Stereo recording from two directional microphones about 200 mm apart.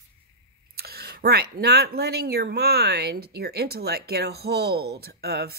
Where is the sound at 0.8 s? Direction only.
50° right (ahead or behind).